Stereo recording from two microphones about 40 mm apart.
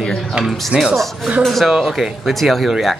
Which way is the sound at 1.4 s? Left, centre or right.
Centre.